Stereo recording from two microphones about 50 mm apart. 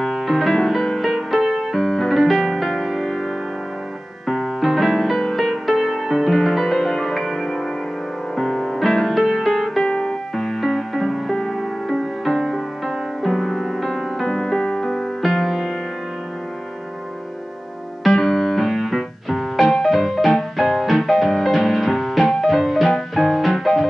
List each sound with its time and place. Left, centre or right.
0.0 s music: centre
1.8 s music: centre
4.3 s music: centre
9.8 s music: centre
10.3 s music: centre
18.0 s music: centre